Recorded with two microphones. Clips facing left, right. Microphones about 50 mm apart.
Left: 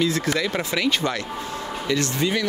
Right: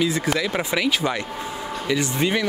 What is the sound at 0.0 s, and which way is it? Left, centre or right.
Speech, centre.